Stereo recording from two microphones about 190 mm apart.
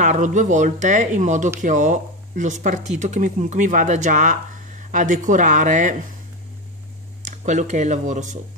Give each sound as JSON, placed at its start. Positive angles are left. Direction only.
{"t": 0.0, "sound": "speech", "side_deg": -40}
{"t": 7.2, "sound": "speech", "side_deg": -40}